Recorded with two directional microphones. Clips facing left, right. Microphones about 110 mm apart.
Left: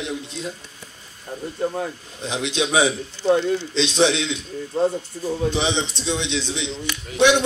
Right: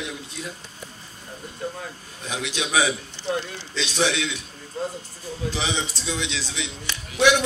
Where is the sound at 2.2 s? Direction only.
25° left (ahead or behind).